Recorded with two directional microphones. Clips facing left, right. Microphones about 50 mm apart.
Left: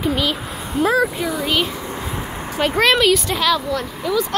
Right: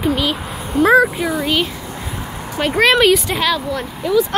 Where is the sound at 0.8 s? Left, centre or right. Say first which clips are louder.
Right 6 dB; centre.